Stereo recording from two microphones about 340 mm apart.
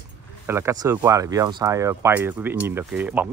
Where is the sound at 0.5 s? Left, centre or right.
Centre.